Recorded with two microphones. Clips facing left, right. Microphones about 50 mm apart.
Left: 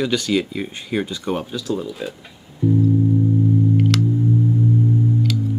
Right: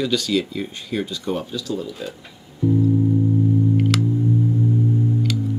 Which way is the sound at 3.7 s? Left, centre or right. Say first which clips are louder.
Left 1 dB; centre.